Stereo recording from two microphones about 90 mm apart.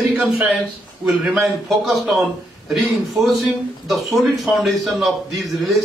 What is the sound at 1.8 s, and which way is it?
A man's voice, centre (ahead or behind).